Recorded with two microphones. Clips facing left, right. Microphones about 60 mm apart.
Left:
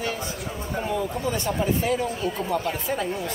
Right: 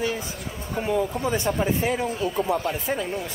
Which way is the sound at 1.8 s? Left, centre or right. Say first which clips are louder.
Left 2 dB; right.